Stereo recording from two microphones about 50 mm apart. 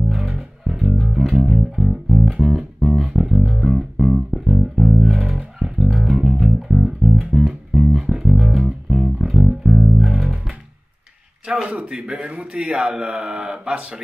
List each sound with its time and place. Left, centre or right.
0.1 s music: centre
4.3 s bass guitar: centre
6.2 s music: centre
11.4 s a man's voice: centre